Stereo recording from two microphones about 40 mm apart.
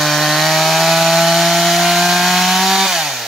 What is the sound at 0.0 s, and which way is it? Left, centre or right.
Wood, centre.